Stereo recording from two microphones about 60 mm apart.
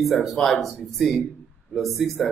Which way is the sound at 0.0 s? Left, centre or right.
Centre.